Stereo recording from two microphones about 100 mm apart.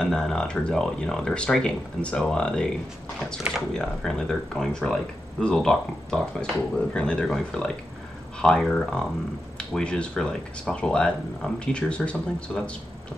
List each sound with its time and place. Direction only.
0.0 s speech: 5° left (ahead or behind)
3.7 s speech: 5° left (ahead or behind)